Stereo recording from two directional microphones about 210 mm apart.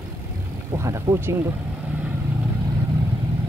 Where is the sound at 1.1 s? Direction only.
15° right (ahead or behind).